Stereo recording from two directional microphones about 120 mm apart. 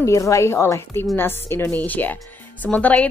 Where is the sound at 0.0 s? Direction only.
25° left (ahead or behind).